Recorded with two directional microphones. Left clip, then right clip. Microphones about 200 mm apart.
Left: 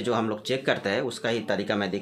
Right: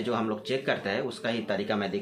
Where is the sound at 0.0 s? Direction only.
55° left (ahead or behind).